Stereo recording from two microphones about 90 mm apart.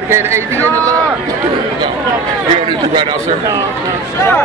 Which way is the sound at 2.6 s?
60° right (ahead or behind).